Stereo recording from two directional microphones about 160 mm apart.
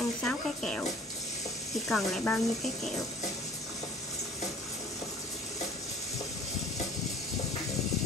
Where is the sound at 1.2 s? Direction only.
20° left (ahead or behind).